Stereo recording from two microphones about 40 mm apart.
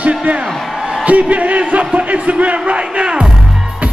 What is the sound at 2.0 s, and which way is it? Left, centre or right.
Music, right.